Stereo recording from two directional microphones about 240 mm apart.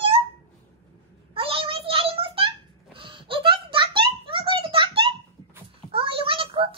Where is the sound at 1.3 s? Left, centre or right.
Right.